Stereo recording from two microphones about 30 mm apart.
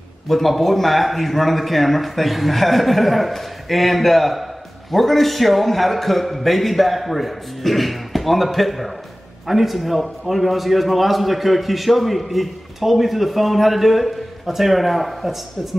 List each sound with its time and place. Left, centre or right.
0.3 s a man's voice: centre